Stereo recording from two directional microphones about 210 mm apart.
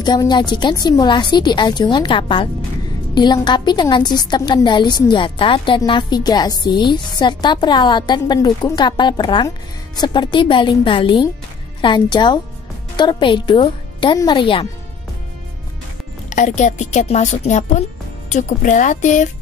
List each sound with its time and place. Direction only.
0.0 s a woman's voice: 20° left (ahead or behind)
16.3 s a woman's voice: 35° left (ahead or behind)